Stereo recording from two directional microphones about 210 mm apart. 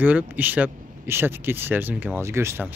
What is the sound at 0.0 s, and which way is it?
Speech, 10° right (ahead or behind).